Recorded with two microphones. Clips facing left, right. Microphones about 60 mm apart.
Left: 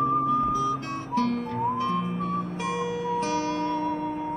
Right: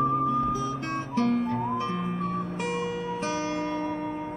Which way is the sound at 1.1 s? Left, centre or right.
Right.